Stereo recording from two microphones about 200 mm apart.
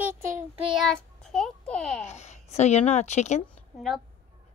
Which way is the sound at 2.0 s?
35° left (ahead or behind).